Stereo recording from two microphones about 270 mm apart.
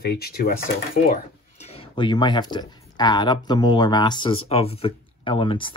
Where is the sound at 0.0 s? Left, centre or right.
Left.